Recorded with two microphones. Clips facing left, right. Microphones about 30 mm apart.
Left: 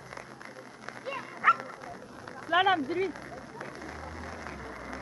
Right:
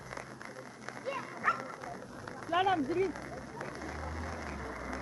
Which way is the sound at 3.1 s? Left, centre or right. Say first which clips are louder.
Left 1 dB; centre.